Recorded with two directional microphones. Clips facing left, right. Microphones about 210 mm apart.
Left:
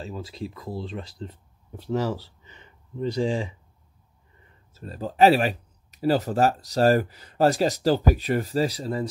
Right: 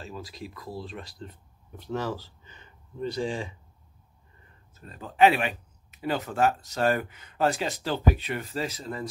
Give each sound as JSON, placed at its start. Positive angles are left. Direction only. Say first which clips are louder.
{"t": 0.0, "sound": "speech", "louder": "left 5 dB", "side_deg": 30}
{"t": 4.7, "sound": "speech", "louder": "left 3 dB", "side_deg": 35}